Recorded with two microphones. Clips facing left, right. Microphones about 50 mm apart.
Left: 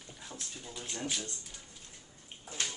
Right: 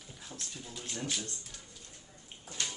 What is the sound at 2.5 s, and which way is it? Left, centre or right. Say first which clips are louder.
Bathtub: left 1 dB; left.